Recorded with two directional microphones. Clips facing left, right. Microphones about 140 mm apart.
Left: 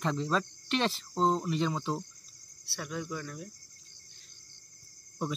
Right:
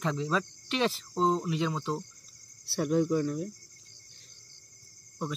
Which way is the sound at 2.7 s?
45° right (ahead or behind).